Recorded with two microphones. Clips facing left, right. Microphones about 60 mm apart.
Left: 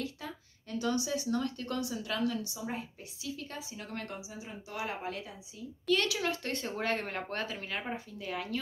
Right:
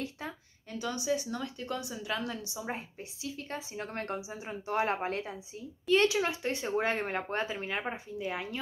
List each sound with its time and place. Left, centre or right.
0.2 s a sound: right
0.7 s a woman's voice: right
5.9 s speech: right